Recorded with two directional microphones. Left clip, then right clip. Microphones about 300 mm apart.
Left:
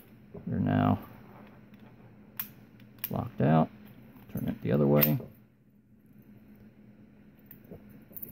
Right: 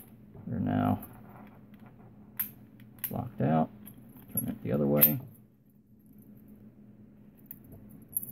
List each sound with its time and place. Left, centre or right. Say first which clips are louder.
0.5 s a sound: left 2 dB; centre
3.1 s speech: left 3 dB; centre
4.3 s keys jangling: left 2 dB; centre